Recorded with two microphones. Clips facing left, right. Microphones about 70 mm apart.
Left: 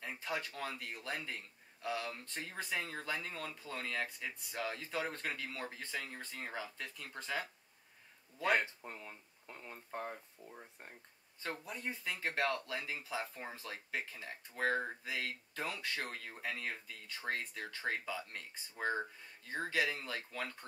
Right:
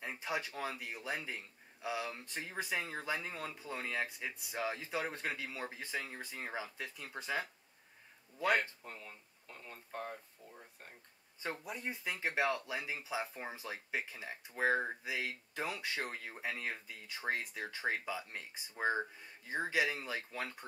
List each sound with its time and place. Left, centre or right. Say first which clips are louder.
0.0 s speech: right 2 dB; centre
8.5 s speech: even; centre
11.6 s speech: right 1 dB; centre